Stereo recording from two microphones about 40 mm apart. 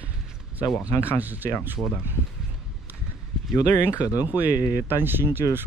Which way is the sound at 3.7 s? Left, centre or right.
Left.